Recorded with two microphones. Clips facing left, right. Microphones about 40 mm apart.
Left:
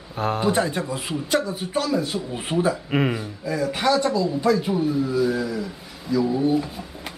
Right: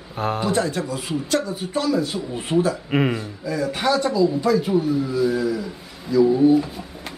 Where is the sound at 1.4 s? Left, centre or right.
Centre.